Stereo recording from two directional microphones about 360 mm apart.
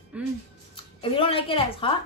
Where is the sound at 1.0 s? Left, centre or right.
Centre.